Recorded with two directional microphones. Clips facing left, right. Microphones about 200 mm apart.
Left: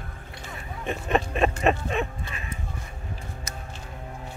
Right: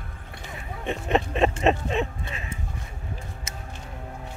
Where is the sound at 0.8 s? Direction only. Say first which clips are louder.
Right 1 dB; 20° right (ahead or behind).